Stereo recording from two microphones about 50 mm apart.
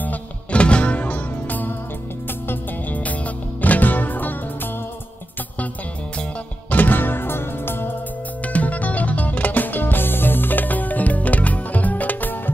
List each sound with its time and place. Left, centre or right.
0.0 s music: left
2.9 s music: left
6.7 s music: left
8.5 s music: left